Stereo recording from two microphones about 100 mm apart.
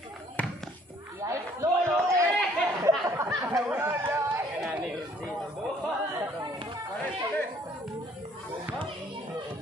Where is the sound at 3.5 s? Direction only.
20° right (ahead or behind).